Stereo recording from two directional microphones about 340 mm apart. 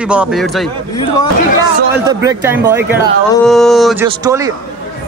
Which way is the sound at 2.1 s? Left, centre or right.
Centre.